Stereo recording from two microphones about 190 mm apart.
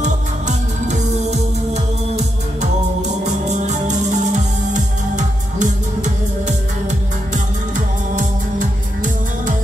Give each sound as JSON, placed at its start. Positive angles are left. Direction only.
{"t": 0.0, "sound": "music", "side_deg": -35}
{"t": 3.3, "sound": "music", "side_deg": -40}
{"t": 8.2, "sound": "music", "side_deg": -45}